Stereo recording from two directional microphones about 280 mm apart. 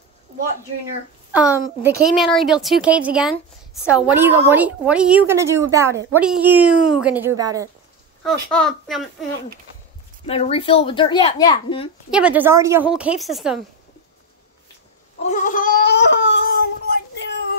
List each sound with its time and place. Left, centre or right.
1.3 s a woman's voice: centre
8.2 s a woman's voice: centre
10.2 s speech: left
12.1 s a woman's voice: centre
15.2 s a sound: left